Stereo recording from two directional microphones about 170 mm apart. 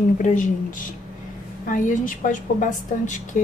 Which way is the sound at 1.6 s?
50° left (ahead or behind).